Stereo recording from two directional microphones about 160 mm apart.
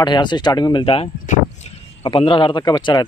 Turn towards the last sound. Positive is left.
turn(degrees=25)  # may be behind; listen again after turning